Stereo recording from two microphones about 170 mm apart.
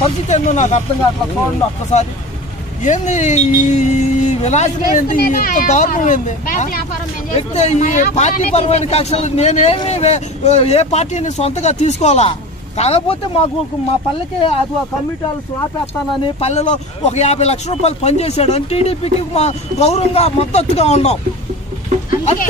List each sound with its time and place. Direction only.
0.0 s speech: 45° left (ahead or behind)
1.9 s speech: 40° left (ahead or behind)
5.2 s speech: 55° left (ahead or behind); by 14.6 s 30° left (ahead or behind)
16.3 s speech: 40° left (ahead or behind)